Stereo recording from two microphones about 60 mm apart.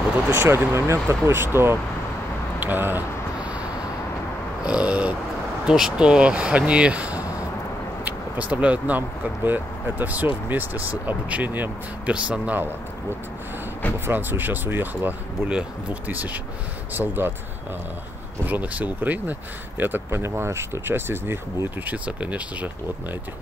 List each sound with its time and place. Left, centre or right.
0.3 s speech: right
0.7 s speech: right
4.6 s speech: right
13.9 s speech: right
15.4 s speech: right
18.4 s speech: right
20.3 s speech: right
21.8 s speech: right